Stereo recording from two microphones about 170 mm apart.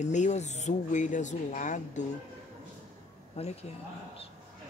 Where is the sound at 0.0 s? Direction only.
45° left (ahead or behind).